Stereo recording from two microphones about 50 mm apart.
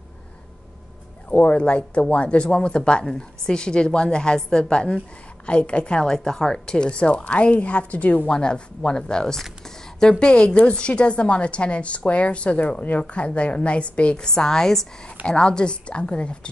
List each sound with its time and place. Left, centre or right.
1.3 s a woman's voice: left
8.3 s a woman's voice: centre